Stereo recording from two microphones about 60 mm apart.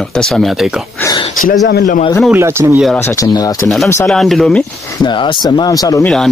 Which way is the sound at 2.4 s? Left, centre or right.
Right.